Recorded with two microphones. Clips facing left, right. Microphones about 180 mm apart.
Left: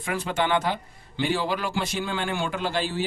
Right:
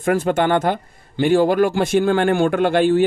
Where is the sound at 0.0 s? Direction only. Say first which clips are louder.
Right 9 dB; 50° right (ahead or behind).